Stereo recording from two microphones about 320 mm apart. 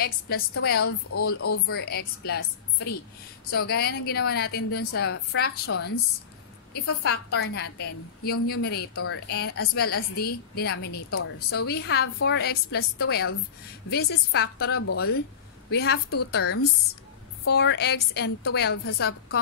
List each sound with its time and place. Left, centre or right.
0.7 s a woman's voice: left
1.4 s a woman's voice: left
1.8 s a woman's voice: left
8.9 s a woman's voice: left
9.3 s a woman's voice: left
11.1 s a woman's voice: left
11.6 s a woman's voice: left
14.8 s a woman's voice: left
15.7 s a woman's voice: left